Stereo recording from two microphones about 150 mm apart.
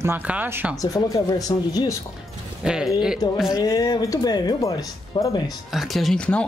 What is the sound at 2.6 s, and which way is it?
Speech, 5° right (ahead or behind).